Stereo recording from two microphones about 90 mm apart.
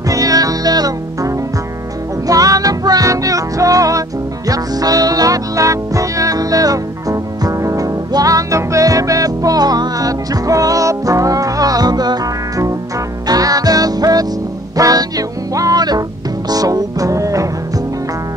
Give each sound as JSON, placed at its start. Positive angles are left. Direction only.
{"t": 0.1, "sound": "music", "side_deg": -40}